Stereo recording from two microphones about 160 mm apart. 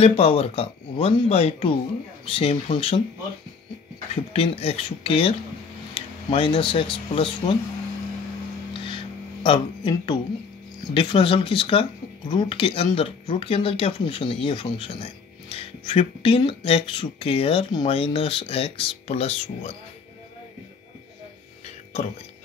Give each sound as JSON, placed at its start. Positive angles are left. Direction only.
{"t": 0.0, "sound": "speech", "side_deg": 35}
{"t": 4.1, "sound": "speech", "side_deg": 40}
{"t": 8.7, "sound": "music", "side_deg": 30}
{"t": 10.9, "sound": "speech", "side_deg": 35}